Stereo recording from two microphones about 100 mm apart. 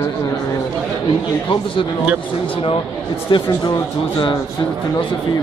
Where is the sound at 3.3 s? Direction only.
55° left (ahead or behind).